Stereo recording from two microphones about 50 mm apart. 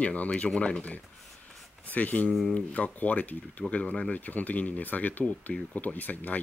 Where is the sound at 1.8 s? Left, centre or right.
Left.